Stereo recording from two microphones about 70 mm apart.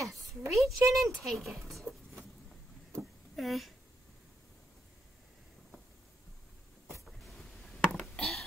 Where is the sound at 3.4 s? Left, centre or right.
Centre.